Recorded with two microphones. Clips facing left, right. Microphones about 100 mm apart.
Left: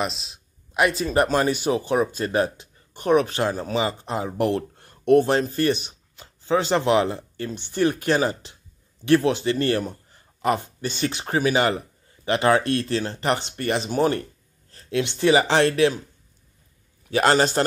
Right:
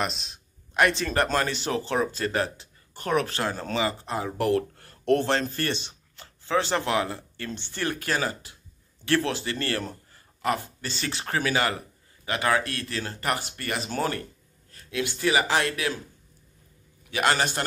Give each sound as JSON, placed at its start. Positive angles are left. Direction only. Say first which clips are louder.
{"t": 0.0, "sound": "a man's voice", "louder": "left 2 dB", "side_deg": 0}
{"t": 14.7, "sound": "speech", "louder": "left 5 dB", "side_deg": 30}
{"t": 17.1, "sound": "a man's voice", "louder": "left 6 dB", "side_deg": 35}